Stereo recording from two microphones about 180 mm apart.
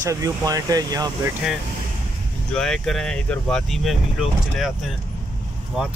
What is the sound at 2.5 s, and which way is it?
Speech, 5° left (ahead or behind).